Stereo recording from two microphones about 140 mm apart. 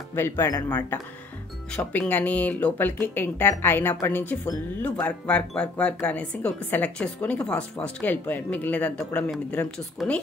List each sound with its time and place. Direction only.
0.1 s speech: 20° left (ahead or behind)